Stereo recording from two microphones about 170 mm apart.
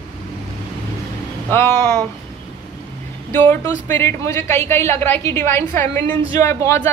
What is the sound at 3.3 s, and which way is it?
A woman's voice, 15° left (ahead or behind).